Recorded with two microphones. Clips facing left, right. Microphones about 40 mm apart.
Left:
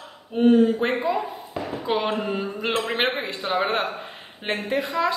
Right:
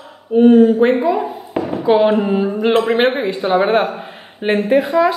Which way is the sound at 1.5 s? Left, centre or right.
Right.